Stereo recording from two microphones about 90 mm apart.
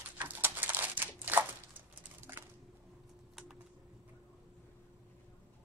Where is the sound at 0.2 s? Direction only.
20° right (ahead or behind).